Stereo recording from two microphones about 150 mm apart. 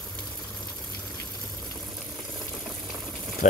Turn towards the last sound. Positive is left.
turn(degrees=55)  # may be behind; listen again after turning